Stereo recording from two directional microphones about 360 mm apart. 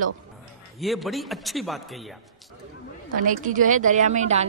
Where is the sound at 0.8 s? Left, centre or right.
Centre.